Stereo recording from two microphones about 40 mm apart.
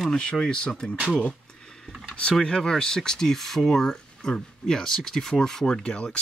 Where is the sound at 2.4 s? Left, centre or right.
Centre.